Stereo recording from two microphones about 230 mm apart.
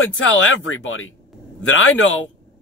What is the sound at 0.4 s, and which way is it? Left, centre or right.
Speech, left.